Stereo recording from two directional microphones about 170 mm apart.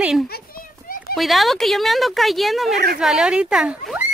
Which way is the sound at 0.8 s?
55° left (ahead or behind).